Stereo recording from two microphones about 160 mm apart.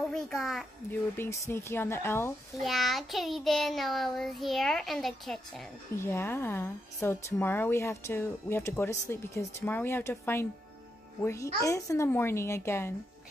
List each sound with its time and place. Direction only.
0.1 s a child's voice: centre (ahead or behind)
1.1 s a woman's voice: 15° left (ahead or behind)
2.6 s child singing: centre (ahead or behind)
5.9 s a woman's voice: 15° left (ahead or behind)